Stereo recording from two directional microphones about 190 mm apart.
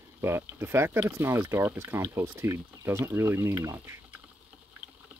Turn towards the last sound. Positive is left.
turn(degrees=-10)  # may be behind; listen again after turning